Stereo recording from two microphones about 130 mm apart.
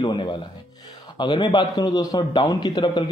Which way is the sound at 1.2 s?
35° left (ahead or behind).